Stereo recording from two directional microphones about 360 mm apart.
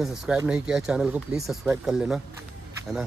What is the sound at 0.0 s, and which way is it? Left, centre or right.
Speech, centre.